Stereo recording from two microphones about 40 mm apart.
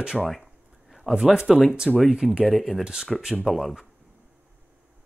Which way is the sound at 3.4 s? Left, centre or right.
Centre.